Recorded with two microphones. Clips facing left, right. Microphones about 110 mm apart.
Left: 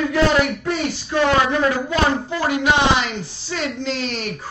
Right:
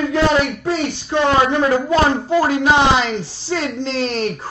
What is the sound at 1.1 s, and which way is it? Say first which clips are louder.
Speech: right 2 dB; 30° right (ahead or behind).